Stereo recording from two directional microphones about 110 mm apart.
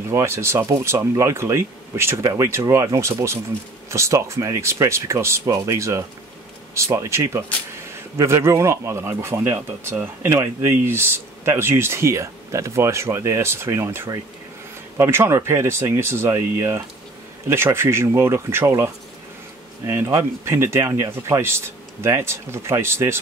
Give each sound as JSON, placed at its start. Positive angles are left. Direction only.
{"t": 0.1, "sound": "speech", "side_deg": -25}
{"t": 19.9, "sound": "speech", "side_deg": -25}